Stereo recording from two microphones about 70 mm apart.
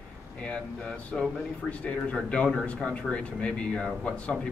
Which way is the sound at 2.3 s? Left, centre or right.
Centre.